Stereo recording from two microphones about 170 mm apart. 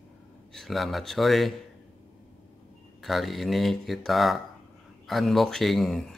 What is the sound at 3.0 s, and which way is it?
Speech, centre (ahead or behind).